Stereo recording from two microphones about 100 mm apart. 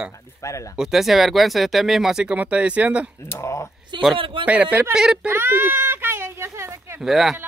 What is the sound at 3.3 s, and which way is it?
Speech, 30° left (ahead or behind).